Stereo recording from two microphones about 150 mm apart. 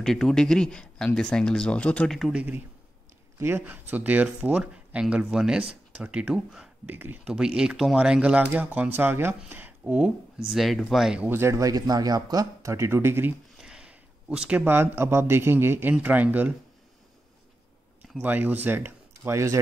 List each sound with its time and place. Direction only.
0.0 s speech: 5° left (ahead or behind)
3.3 s speech: 15° right (ahead or behind)
11.2 s speech: 15° right (ahead or behind)
13.6 s speech: 5° right (ahead or behind)
18.2 s speech: 10° right (ahead or behind)